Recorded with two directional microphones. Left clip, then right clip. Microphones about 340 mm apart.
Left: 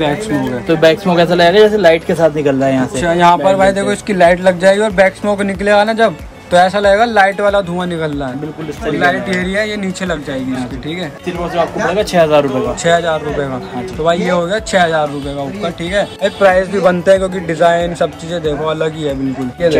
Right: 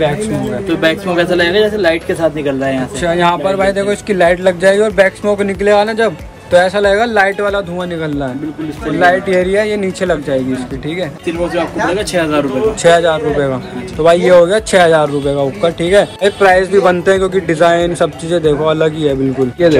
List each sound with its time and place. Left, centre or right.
0.7 s a man's voice: left
3.0 s speech: centre
11.5 s speech: centre
12.8 s speech: centre